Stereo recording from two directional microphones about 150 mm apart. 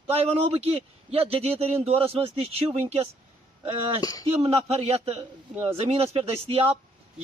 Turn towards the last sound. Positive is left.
turn(degrees=-40)  # may be behind; listen again after turning